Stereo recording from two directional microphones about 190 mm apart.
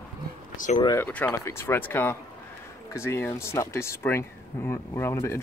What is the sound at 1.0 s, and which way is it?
Speech, 10° left (ahead or behind).